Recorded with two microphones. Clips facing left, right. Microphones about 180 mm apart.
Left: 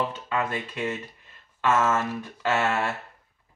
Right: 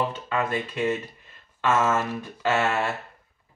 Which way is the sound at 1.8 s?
10° right (ahead or behind).